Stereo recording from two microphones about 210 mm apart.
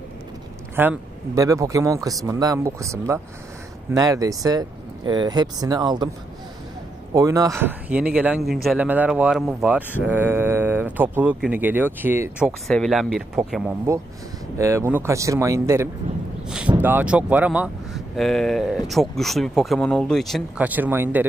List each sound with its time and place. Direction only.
0.7 s speech: 10° right (ahead or behind)
7.2 s speech: 15° right (ahead or behind)